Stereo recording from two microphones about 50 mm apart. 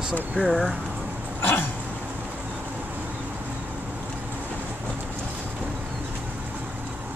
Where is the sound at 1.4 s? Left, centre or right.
Left.